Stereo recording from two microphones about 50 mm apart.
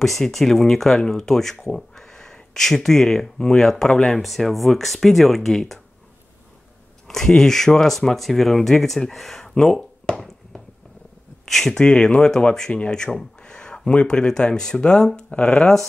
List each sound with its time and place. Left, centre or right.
0.0 s speech: centre
7.1 s speech: centre
10.1 s a sound: centre
11.4 s speech: centre
11.8 s speech: centre